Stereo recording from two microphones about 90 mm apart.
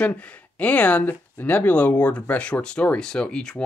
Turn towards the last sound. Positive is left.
turn(degrees=10)  # may be behind; listen again after turning